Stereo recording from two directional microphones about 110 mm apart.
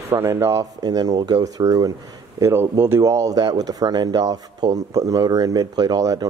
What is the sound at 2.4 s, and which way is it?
Speech, 20° right (ahead or behind).